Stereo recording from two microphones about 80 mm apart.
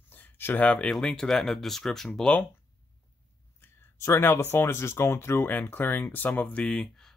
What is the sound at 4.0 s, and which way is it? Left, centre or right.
Speech, left.